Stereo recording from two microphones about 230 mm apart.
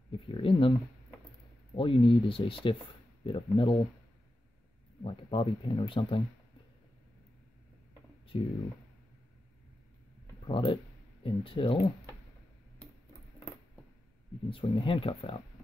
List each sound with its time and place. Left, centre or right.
0.1 s a sound: left
1.8 s speech: left
5.0 s speech: left
8.3 s speech: left
10.4 s speech: left
14.5 s speech: left